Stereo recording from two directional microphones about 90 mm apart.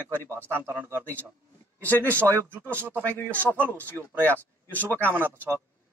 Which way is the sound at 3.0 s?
20° left (ahead or behind).